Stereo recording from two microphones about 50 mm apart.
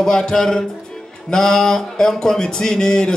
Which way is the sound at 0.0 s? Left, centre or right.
Centre.